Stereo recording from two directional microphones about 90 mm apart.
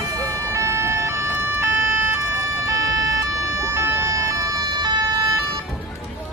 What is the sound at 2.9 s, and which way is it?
Vehicle, 35° right (ahead or behind).